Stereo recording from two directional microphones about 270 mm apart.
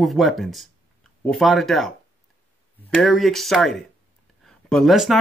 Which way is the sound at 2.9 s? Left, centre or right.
Centre.